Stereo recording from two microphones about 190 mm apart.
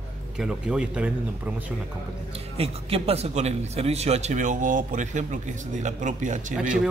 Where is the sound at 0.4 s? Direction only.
5° right (ahead or behind).